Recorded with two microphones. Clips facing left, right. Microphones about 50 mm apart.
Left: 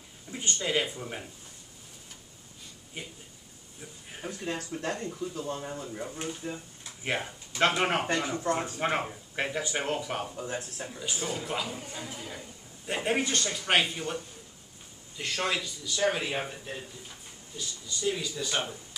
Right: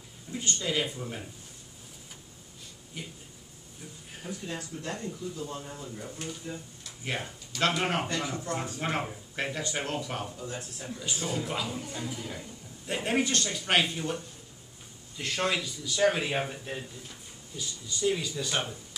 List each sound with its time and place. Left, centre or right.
0.3 s speech: left
2.9 s speech: left
4.2 s speech: left
5.7 s speech: left
9.0 s speech: centre
10.3 s speech: left
10.9 s a man's voice: centre